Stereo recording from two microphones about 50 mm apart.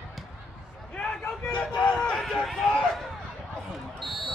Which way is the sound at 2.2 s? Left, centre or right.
Centre.